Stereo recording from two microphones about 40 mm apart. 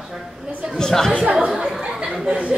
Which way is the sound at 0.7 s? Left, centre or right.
Centre.